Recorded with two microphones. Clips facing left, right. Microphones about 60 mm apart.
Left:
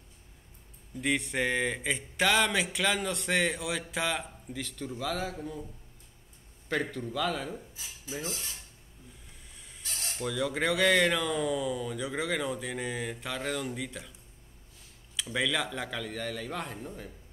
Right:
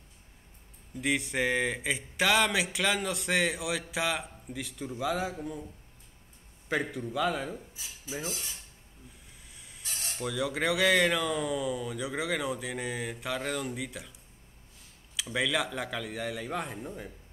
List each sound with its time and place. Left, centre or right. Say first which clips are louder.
0.9 s a man's voice: even; centre
6.7 s a man's voice: right 1 dB; centre
9.6 s speech: even; centre
15.3 s a man's voice: right 1 dB; centre